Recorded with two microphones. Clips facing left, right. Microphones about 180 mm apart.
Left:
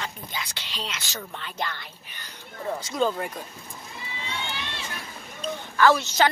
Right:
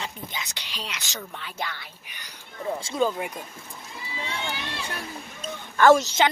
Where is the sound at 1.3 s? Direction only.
10° right (ahead or behind).